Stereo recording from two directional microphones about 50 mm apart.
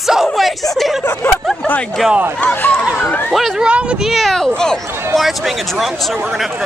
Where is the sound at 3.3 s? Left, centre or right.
Centre.